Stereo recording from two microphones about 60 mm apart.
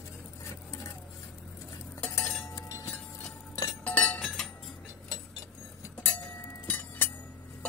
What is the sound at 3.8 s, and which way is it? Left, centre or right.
Chink, left.